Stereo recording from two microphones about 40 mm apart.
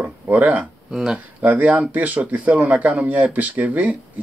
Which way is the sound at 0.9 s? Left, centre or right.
Centre.